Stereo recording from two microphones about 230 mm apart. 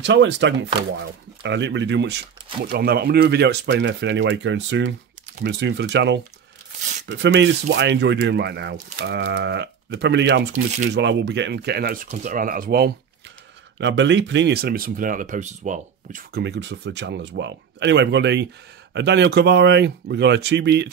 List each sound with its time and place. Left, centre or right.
0.0 s speech: right
13.7 s speech: right